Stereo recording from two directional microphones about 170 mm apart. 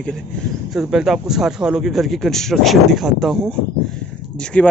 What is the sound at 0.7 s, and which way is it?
A man's voice, centre (ahead or behind).